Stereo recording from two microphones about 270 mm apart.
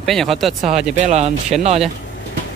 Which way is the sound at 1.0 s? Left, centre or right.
Right.